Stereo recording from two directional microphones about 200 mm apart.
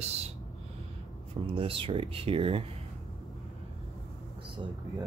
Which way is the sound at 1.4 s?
25° right (ahead or behind).